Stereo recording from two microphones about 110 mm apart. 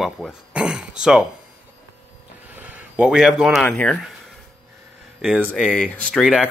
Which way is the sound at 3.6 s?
10° left (ahead or behind).